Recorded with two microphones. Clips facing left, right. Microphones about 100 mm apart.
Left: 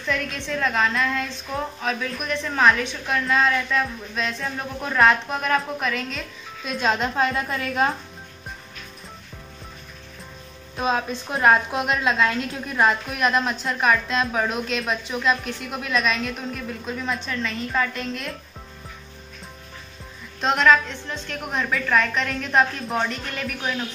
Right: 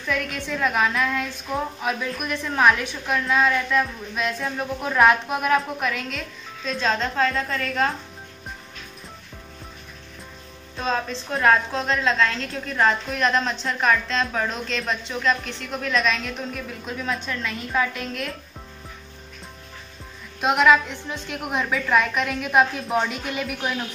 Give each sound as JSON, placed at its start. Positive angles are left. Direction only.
{"t": 0.0, "sound": "a woman's voice", "side_deg": -5}
{"t": 6.6, "sound": "a woman's voice", "side_deg": 10}
{"t": 10.8, "sound": "a woman's voice", "side_deg": 15}
{"t": 20.3, "sound": "a woman's voice", "side_deg": -10}